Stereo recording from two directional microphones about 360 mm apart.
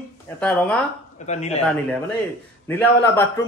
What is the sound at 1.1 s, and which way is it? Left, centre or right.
Speech, centre.